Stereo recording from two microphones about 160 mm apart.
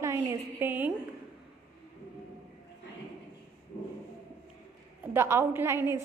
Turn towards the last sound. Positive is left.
turn(degrees=-15)  # may be behind; listen again after turning